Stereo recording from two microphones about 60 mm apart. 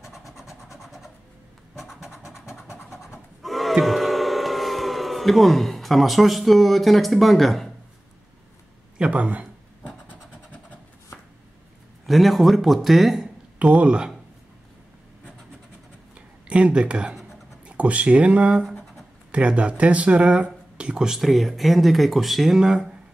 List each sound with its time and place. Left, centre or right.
0.0 s vehicle: centre
1.8 s scratch: centre
3.4 s crowd: centre
8.9 s speech: centre
12.1 s speech: centre
13.6 s speech: centre
16.2 s a sound: centre
17.6 s speech: right
21.2 s speech: centre